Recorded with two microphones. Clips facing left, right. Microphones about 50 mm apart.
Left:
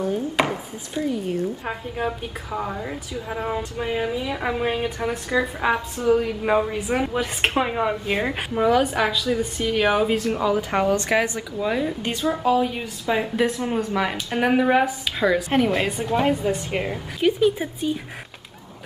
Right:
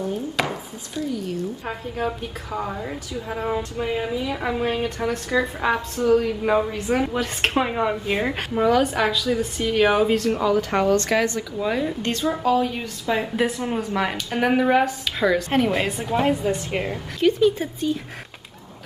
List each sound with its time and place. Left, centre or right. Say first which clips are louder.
1.1 s a woman's voice: left 2 dB; left
1.7 s a woman's voice: even; centre
11.5 s a woman's voice: even; centre